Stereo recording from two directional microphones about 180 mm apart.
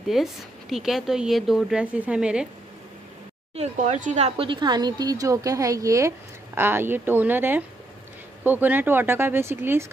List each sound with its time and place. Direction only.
0.0 s speech: centre (ahead or behind)
3.5 s speech: 40° right (ahead or behind); by 9.8 s 15° right (ahead or behind)